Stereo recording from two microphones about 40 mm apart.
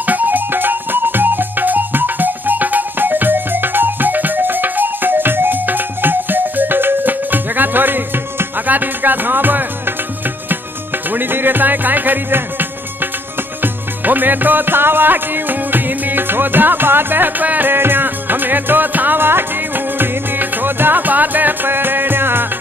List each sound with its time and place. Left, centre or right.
0.0 s music: right
11.1 s music: right